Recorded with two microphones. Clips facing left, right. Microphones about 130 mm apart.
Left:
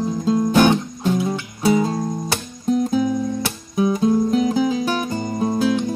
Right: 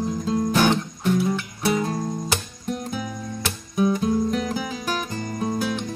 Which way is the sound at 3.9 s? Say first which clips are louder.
Left 5 dB; 25° left (ahead or behind).